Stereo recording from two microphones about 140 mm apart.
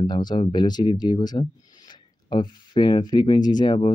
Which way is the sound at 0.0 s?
30° left (ahead or behind).